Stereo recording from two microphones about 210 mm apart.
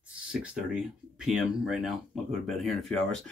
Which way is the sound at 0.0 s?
5° right (ahead or behind).